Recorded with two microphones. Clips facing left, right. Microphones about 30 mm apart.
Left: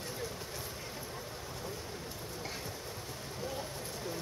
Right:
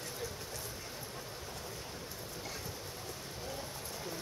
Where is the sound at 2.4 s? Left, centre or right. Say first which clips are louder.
Left 2 dB; centre.